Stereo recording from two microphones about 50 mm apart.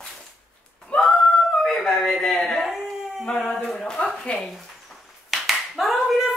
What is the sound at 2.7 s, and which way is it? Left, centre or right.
Dog, centre.